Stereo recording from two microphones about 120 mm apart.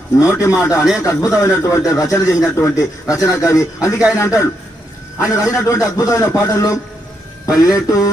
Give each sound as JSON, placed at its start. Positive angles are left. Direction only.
{"t": 0.2, "sound": "a man's voice", "side_deg": 25}